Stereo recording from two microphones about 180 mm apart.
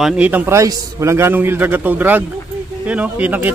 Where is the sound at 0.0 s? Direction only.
5° right (ahead or behind).